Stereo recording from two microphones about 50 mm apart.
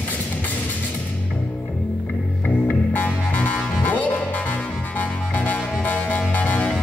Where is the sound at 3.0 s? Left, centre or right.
Left.